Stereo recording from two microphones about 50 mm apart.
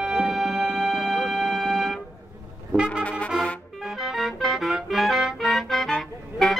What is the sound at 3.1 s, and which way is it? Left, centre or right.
Music, left.